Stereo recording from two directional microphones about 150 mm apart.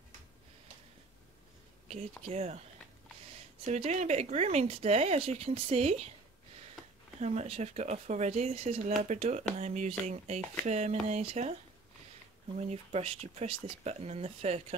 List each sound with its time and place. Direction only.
1.9 s speech: 50° right (ahead or behind)
3.6 s speech: 50° right (ahead or behind)
7.2 s speech: 45° right (ahead or behind)
12.5 s speech: 45° right (ahead or behind)